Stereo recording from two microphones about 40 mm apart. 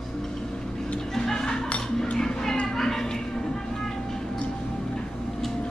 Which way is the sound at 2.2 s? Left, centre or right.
Centre.